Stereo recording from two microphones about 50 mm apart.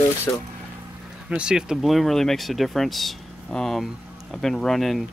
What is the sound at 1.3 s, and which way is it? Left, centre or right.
Speech, centre.